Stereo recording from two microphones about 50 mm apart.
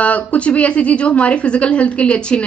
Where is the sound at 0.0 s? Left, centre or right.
Left.